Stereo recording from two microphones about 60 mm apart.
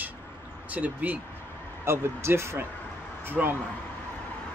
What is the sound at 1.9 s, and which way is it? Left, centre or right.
Speech, right.